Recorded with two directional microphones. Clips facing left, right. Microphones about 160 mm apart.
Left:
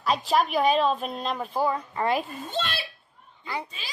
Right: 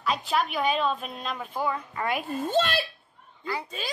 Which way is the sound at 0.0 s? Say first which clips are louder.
Left 3 dB; 40° left (ahead or behind).